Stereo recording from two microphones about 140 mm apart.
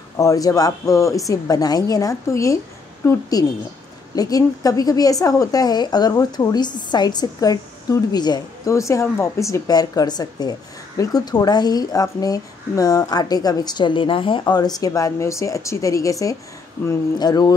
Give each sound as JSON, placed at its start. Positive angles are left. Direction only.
{"t": 0.2, "sound": "a woman's voice", "side_deg": 25}